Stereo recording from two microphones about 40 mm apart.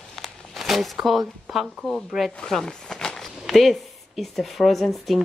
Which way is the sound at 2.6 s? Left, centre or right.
Centre.